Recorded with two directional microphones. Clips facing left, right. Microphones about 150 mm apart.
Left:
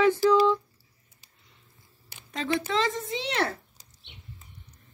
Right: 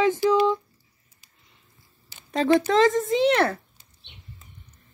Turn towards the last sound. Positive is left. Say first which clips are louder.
# right 9 dB
turn(degrees=-55)  # may be behind; listen again after turning